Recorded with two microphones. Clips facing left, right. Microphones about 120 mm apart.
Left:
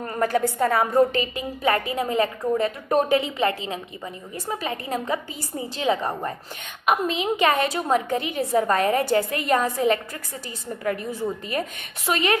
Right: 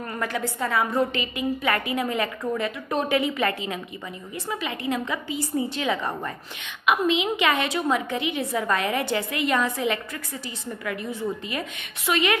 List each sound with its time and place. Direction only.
0.0 s a woman's voice: 40° left (ahead or behind)